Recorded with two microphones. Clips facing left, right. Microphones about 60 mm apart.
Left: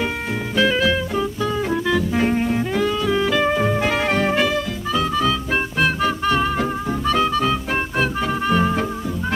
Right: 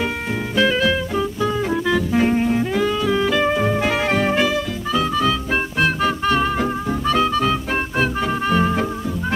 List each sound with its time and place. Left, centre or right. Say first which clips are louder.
0.6 s music: even; centre